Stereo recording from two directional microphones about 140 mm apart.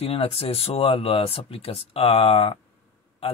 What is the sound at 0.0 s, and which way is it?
Speech, 45° left (ahead or behind).